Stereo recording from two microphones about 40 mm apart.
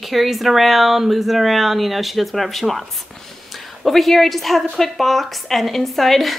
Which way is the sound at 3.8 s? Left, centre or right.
Centre.